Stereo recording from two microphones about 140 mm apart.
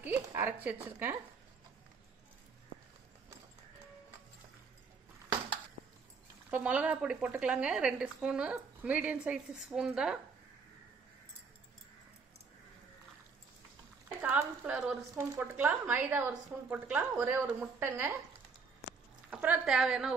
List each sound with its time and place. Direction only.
0.2 s speech: 20° right (ahead or behind)
6.5 s speech: 10° right (ahead or behind)
14.0 s speech: 10° right (ahead or behind)
19.3 s a woman's voice: 10° right (ahead or behind)